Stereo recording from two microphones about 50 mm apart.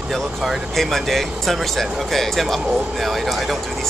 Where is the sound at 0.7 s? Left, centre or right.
Centre.